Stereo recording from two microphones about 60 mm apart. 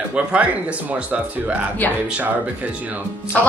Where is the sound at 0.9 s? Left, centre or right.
Right.